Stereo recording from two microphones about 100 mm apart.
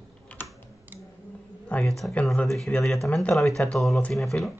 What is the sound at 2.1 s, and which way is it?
Speech, 15° left (ahead or behind).